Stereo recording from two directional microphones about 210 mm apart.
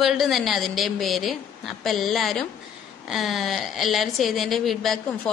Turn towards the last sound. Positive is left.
turn(degrees=0)  # may be behind; listen again after turning